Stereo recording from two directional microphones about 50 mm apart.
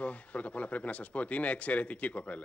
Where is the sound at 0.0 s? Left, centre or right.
Left.